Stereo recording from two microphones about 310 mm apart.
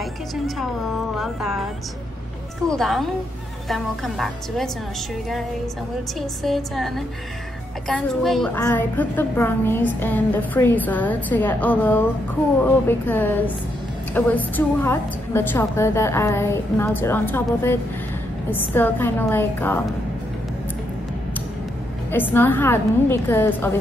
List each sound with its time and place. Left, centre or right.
1.1 s a woman's voice: centre
2.7 s a woman's voice: centre
6.4 s a woman's voice: centre
22.1 s a woman's voice: centre